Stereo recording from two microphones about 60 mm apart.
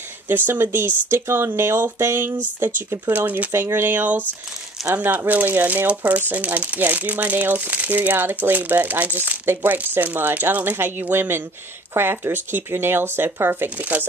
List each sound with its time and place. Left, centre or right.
0.3 s speech: right
3.1 s speech: right
3.5 s speech: right